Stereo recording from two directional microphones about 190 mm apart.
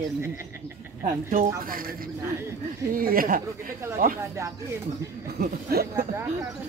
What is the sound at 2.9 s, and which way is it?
A man's voice, 50° right (ahead or behind).